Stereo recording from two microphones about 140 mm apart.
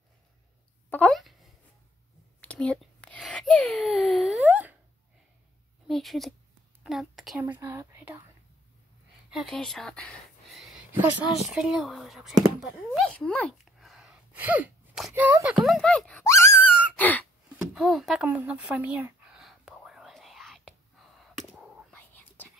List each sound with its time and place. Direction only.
0.8 s a sound: 10° left (ahead or behind)
3.3 s wail: 5° left (ahead or behind); by 4.7 s 10° right (ahead or behind)
5.9 s a sound: centre (ahead or behind)
7.3 s speech: 10° right (ahead or behind)
7.6 s speech: 20° right (ahead or behind)
9.3 s speech: centre (ahead or behind)
13.0 s a sound: 10° left (ahead or behind); by 14.7 s 10° right (ahead or behind)
15.1 s speech: 10° right (ahead or behind); by 16.3 s 5° left (ahead or behind)
16.3 s a sound: 20° left (ahead or behind)
16.9 s gasp: 10° left (ahead or behind)
17.6 s speech: 5° right (ahead or behind)
18.3 s whispering: 10° right (ahead or behind)
21.9 s whispering: 15° left (ahead or behind)